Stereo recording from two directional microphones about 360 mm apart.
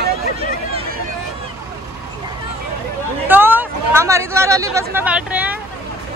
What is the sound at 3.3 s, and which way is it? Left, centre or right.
Hubbub, centre.